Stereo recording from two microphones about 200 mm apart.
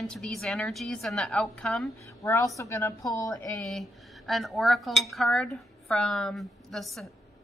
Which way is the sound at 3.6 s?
Centre (ahead or behind).